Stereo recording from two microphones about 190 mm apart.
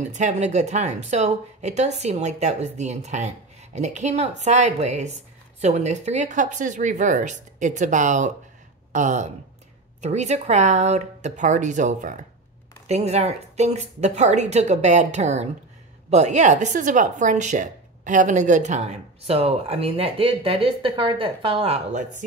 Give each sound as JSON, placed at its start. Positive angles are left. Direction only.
{"t": 0.0, "sound": "speech", "side_deg": -40}